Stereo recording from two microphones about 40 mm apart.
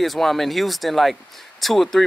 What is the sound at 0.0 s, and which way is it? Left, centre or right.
Speech, centre.